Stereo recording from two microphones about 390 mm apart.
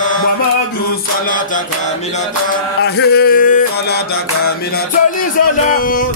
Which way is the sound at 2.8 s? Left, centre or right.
Left.